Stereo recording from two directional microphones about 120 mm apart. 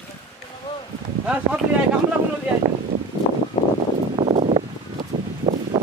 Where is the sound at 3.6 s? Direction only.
55° left (ahead or behind).